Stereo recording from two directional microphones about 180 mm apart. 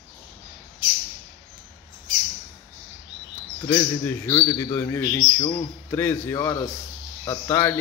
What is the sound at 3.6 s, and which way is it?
A man's voice, 15° left (ahead or behind).